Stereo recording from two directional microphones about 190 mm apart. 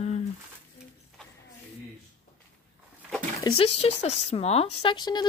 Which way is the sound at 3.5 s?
30° left (ahead or behind).